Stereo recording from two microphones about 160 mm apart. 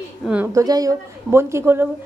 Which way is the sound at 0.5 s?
20° right (ahead or behind).